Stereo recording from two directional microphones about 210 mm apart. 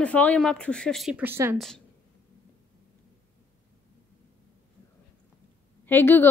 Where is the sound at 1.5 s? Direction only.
Centre (ahead or behind).